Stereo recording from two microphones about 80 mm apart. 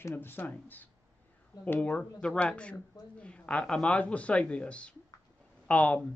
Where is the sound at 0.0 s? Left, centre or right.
Left.